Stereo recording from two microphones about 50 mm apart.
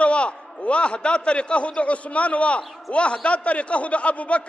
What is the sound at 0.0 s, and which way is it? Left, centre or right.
A man's voice, left.